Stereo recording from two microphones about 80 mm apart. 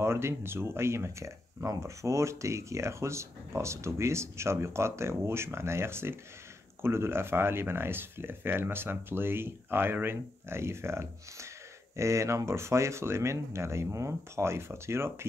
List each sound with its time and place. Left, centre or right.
0.0 s speech: right